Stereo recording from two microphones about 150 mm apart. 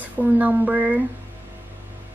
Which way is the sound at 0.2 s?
10° right (ahead or behind).